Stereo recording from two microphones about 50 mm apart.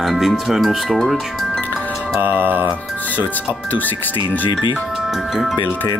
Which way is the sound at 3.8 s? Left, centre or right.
Left.